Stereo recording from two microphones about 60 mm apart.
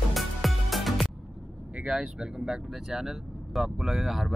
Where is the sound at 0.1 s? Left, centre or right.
Centre.